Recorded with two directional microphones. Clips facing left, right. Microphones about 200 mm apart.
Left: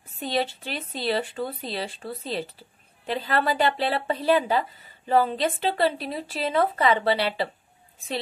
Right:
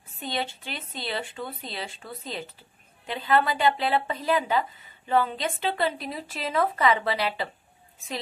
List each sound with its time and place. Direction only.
0.2 s speech: 35° left (ahead or behind)